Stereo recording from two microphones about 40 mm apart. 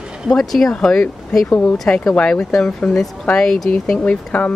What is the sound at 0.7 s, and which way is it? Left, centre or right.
Speech, centre.